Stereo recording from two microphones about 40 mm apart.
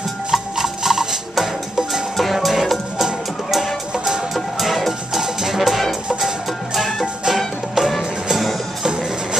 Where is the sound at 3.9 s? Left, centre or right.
Centre.